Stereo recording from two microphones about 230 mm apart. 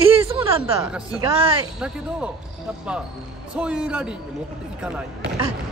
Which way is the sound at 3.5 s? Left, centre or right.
Centre.